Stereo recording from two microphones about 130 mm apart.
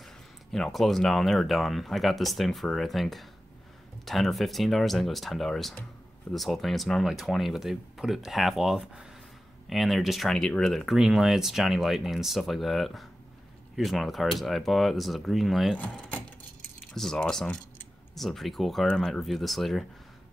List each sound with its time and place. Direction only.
0.0 s speech: centre (ahead or behind)
16.9 s speech: 5° left (ahead or behind)